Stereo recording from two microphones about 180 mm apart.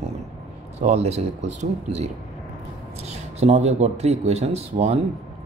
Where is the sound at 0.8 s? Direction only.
40° right (ahead or behind).